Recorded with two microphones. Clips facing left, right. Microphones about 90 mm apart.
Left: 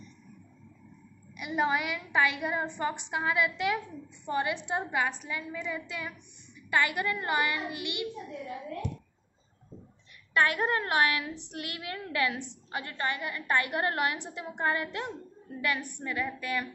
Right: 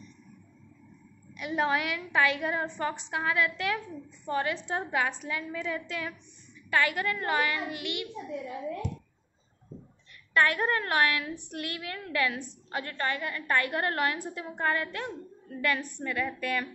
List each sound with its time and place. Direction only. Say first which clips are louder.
1.3 s a woman's voice: even; 10° left (ahead or behind)
6.7 s a woman's voice: right 1 dB; 15° left (ahead or behind)
10.3 s a woman's voice: right 1 dB; 15° left (ahead or behind)